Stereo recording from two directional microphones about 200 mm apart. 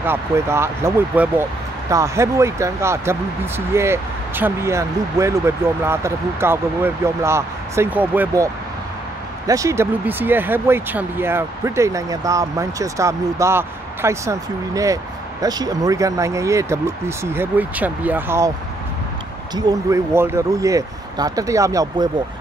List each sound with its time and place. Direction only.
0.0 s speech: 10° right (ahead or behind)
9.5 s speech: 15° right (ahead or behind)
19.5 s speech: 15° right (ahead or behind)